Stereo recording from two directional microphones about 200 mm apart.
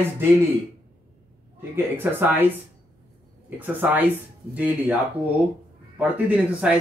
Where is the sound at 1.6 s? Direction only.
10° right (ahead or behind).